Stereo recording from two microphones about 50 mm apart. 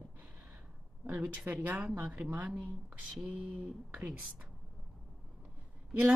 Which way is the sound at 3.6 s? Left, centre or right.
Right.